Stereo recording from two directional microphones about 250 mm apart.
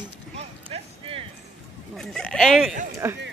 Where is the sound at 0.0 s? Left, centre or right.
Right.